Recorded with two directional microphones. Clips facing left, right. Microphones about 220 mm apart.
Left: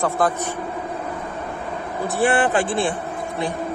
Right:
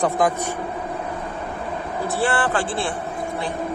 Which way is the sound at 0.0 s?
15° right (ahead or behind).